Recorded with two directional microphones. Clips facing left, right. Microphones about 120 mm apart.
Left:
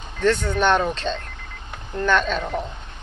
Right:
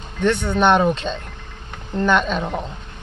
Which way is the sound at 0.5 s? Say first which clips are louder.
Right 4 dB; 20° right (ahead or behind).